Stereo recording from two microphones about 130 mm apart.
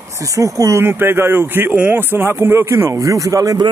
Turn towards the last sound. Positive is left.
turn(degrees=-30)  # may be behind; listen again after turning